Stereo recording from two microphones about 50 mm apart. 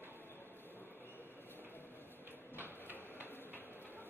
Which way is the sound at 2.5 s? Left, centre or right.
Right.